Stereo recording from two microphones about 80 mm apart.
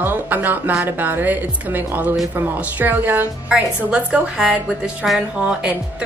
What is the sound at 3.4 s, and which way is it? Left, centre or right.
A woman's voice, centre.